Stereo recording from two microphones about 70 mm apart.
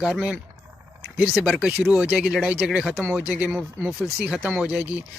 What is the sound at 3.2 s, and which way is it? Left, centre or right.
Speech, centre.